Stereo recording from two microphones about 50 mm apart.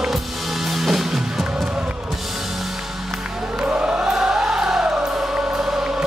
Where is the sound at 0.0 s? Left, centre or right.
Centre.